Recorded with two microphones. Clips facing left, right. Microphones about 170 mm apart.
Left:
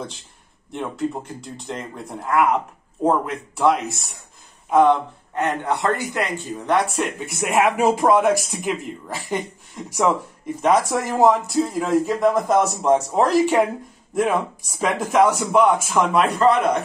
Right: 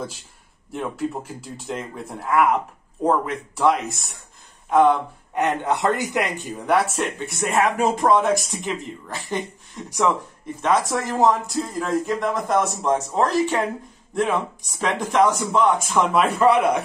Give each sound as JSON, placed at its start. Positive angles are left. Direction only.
{"t": 0.7, "sound": "speech", "side_deg": -5}
{"t": 5.3, "sound": "speech", "side_deg": -15}
{"t": 7.2, "sound": "speech", "side_deg": 10}
{"t": 14.8, "sound": "speech", "side_deg": 10}
{"t": 16.0, "sound": "speech", "side_deg": 0}